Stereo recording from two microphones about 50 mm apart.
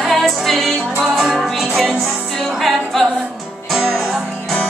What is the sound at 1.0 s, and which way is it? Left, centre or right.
Music, centre.